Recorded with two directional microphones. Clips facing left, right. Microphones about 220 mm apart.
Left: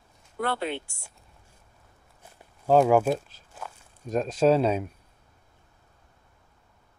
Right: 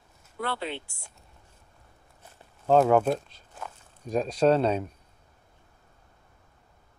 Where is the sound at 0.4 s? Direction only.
50° left (ahead or behind).